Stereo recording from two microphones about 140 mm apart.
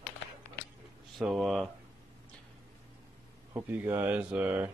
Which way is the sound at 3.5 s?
15° right (ahead or behind).